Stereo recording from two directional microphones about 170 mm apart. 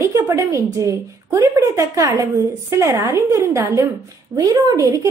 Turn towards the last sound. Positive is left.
turn(degrees=-20)  # may be behind; listen again after turning